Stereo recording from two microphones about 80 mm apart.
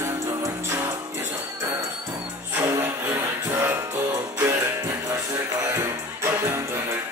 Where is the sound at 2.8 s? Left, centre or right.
Right.